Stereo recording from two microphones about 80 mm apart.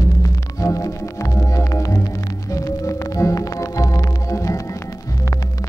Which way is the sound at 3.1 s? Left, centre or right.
Left.